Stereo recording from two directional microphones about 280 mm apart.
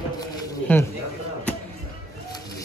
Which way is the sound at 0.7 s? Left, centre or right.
Centre.